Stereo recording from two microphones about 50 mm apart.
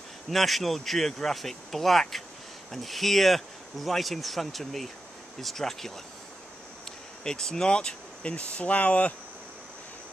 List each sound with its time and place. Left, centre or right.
0.3 s speech: centre
7.2 s speech: centre